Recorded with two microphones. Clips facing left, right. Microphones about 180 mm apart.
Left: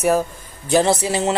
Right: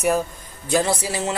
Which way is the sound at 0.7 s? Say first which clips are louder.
Left 4 dB; 25° left (ahead or behind).